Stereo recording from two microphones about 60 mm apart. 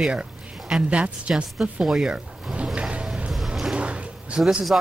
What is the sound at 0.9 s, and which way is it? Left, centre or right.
Speech, right.